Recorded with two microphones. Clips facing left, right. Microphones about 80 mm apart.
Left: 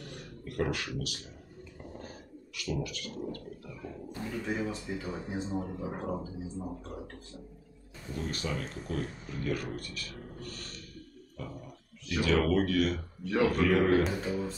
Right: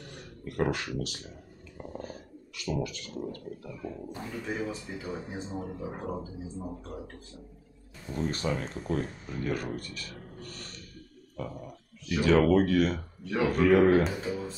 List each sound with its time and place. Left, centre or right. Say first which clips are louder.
0.5 s speech: right 3 dB; right
2.5 s speech: right 3 dB; right
4.3 s speech: left 1 dB; centre
8.1 s speech: right 5 dB; right
12.2 s speech: right 5 dB; right
14.0 s speech: even; centre